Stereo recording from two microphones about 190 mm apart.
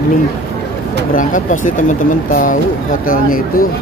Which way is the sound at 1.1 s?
45° left (ahead or behind).